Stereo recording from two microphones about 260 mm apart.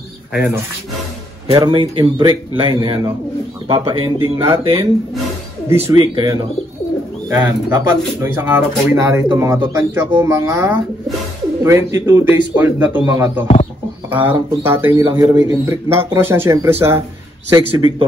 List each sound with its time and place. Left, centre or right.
0.3 s speech: centre
1.5 s a man's voice: centre
5.9 s speech: centre